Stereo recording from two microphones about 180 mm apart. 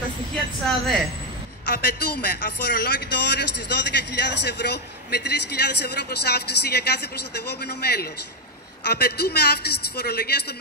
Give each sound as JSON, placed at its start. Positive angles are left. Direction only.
{"t": 0.7, "sound": "a woman's voice", "side_deg": 0}
{"t": 1.8, "sound": "a man's voice", "side_deg": 65}